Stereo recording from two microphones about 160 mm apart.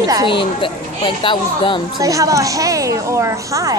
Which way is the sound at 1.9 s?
20° right (ahead or behind).